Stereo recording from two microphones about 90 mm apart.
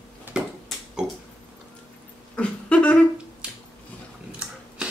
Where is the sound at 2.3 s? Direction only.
15° left (ahead or behind).